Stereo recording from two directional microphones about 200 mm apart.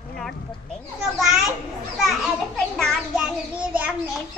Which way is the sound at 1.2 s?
Centre (ahead or behind).